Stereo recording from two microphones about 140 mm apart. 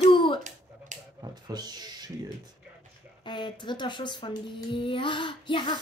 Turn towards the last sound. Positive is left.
turn(degrees=35)  # may be behind; listen again after turning